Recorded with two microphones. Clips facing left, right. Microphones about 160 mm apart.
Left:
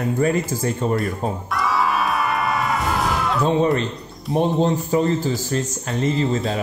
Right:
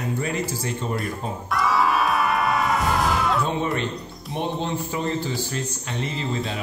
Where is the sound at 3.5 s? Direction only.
30° left (ahead or behind).